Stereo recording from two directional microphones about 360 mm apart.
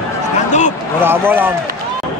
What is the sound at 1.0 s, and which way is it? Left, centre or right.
Speech, centre.